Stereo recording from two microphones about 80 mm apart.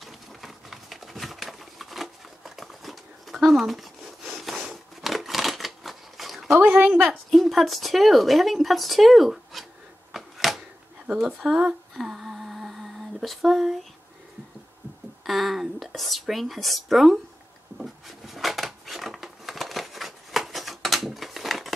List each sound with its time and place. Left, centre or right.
0.0 s a sound: centre
4.3 s wood: centre
4.6 s shuffling cards: centre
6.7 s a woman's voice: centre
7.2 s speech: centre
10.1 s typewriter: centre
11.1 s speech: centre
11.9 s humming: centre
15.2 s speech: centre
17.7 s a sound: centre